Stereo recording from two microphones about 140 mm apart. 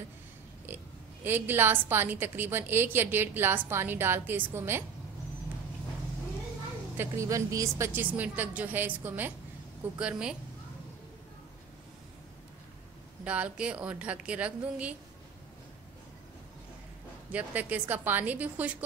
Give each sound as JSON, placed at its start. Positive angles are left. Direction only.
{"t": 1.2, "sound": "a woman's voice", "side_deg": -15}
{"t": 7.0, "sound": "a woman's voice", "side_deg": -20}
{"t": 13.2, "sound": "a woman's voice", "side_deg": -10}
{"t": 17.3, "sound": "a woman's voice", "side_deg": -10}